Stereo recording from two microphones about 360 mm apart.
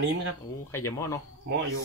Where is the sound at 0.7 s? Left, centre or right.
Centre.